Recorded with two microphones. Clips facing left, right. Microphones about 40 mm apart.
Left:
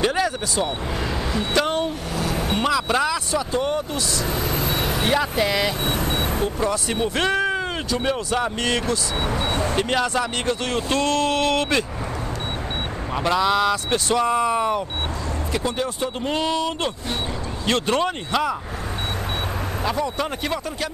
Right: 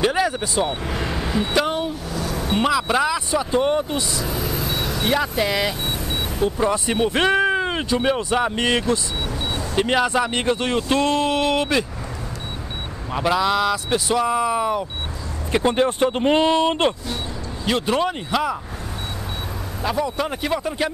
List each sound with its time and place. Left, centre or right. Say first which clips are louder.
0.0 s speech: right 2 dB; centre
0.9 s vehicle: right 1 dB; right
1.4 s speech: even; centre
3.3 s speech: right 3 dB; centre
4.3 s vehicle: left 1 dB; centre
5.4 s speech: even; centre
5.9 s vehicle: left 3 dB; left
6.6 s speech: right 4 dB; centre
9.2 s vehicle: left 3 dB; left
9.8 s speech: right 6 dB; centre
13.1 s speech: right 1 dB; centre
15.5 s speech: right 8 dB; right
17.6 s speech: right 1 dB; centre
19.8 s speech: right 2 dB; centre